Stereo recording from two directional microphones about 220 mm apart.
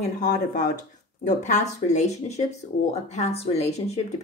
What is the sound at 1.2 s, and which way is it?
Speech, 35° left (ahead or behind).